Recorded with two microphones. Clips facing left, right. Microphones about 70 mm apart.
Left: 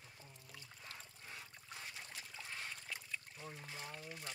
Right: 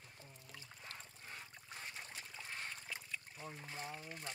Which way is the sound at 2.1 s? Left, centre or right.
Right.